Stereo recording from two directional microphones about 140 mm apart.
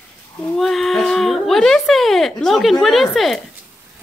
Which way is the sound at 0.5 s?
Centre (ahead or behind).